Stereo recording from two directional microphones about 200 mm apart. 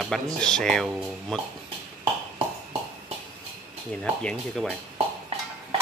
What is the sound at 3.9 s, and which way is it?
Speech, 5° left (ahead or behind).